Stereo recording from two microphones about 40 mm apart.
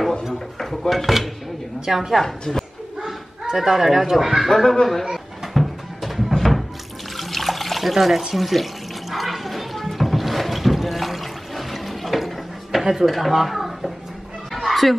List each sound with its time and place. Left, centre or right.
0.3 s speech: centre
2.2 s a woman's voice: centre
3.1 s speech: centre
4.5 s a woman's voice: centre
5.0 s music: centre
7.2 s water: centre
8.4 s speech: centre
9.1 s a sound: centre
14.5 s fowl: centre